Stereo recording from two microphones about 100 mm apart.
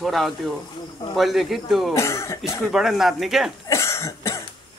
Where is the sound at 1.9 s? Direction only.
30° left (ahead or behind).